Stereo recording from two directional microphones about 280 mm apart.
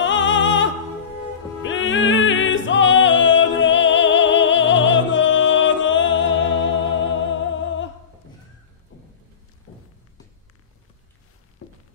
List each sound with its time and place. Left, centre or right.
0.0 s opera: left
1.6 s music: left